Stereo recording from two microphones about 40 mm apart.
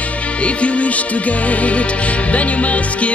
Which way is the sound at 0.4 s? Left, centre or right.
Left.